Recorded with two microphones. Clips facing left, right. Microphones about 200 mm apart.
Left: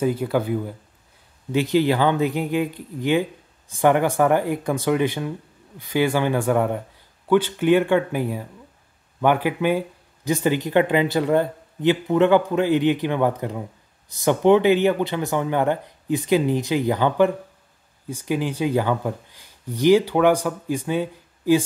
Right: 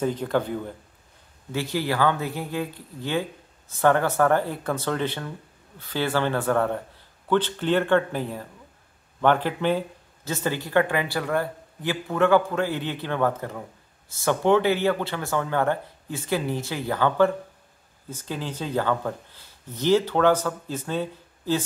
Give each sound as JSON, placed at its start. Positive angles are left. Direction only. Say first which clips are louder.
{"t": 0.0, "sound": "speech", "louder": "left 3 dB", "side_deg": 10}
{"t": 1.5, "sound": "speech", "louder": "left 8 dB", "side_deg": 20}